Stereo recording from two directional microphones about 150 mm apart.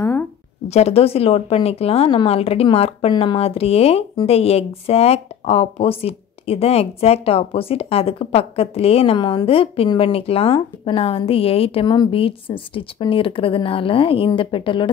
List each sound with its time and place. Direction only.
0.7 s speech: 45° left (ahead or behind)